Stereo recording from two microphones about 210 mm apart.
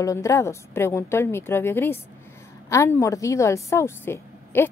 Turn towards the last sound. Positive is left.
turn(degrees=10)  # may be behind; listen again after turning